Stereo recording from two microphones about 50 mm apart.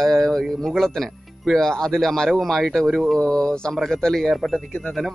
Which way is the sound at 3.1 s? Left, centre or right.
Centre.